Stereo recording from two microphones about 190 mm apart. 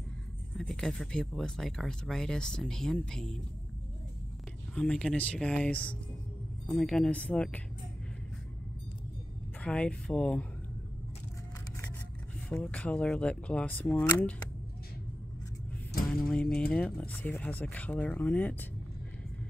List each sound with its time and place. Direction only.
0.6 s speech: centre (ahead or behind)
4.7 s speech: 5° left (ahead or behind)
9.6 s speech: 5° left (ahead or behind)
12.4 s speech: 5° left (ahead or behind)
16.3 s speech: 5° left (ahead or behind)